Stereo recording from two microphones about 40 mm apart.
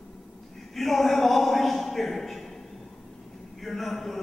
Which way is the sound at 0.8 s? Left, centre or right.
Centre.